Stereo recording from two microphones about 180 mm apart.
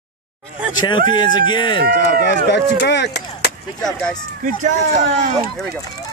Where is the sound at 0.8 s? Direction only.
25° left (ahead or behind).